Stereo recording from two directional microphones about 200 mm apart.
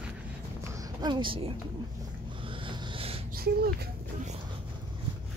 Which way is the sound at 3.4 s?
50° right (ahead or behind).